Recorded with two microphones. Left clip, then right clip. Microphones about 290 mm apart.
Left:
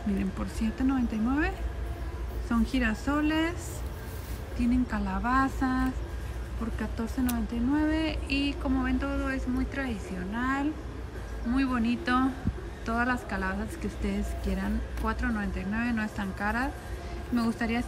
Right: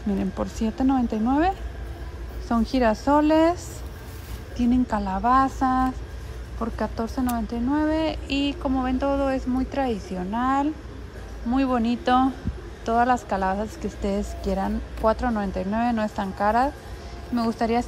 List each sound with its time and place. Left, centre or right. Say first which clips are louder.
0.2 s speech: right 6 dB; centre
2.5 s speech: right 8 dB; centre
4.6 s speech: right 6 dB; centre